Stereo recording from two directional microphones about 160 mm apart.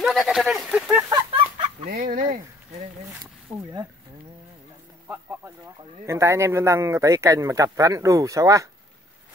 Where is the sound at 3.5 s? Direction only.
20° right (ahead or behind).